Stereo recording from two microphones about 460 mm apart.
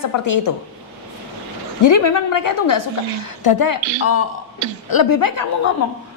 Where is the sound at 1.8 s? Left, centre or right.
Left.